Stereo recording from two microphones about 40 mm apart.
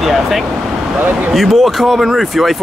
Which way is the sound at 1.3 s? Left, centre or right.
Centre.